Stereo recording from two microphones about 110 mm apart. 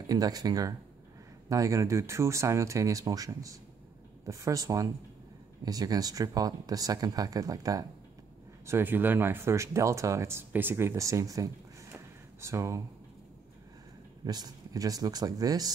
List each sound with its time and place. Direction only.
0.0 s speech: 35° right (ahead or behind)
8.6 s speech: 20° right (ahead or behind)
14.2 s speech: 40° right (ahead or behind)